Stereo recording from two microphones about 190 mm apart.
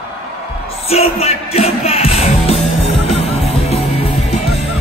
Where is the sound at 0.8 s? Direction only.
30° left (ahead or behind).